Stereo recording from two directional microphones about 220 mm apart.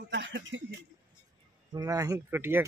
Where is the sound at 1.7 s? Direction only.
15° right (ahead or behind).